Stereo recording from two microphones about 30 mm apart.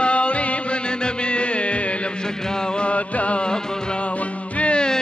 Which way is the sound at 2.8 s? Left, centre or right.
Left.